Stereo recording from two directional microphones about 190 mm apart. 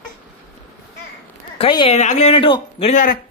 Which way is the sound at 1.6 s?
30° left (ahead or behind).